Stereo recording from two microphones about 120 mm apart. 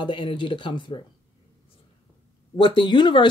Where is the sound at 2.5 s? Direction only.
45° left (ahead or behind).